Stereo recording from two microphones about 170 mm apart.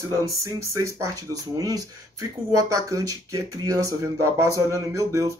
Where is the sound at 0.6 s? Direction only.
15° right (ahead or behind).